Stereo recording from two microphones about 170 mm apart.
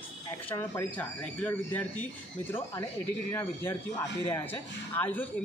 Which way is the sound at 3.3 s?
15° left (ahead or behind).